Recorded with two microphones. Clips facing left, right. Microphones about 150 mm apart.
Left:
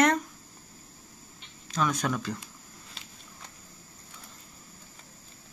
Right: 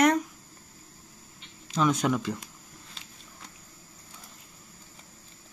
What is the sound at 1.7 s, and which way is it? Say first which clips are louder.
Speech: right 4 dB; 20° right (ahead or behind).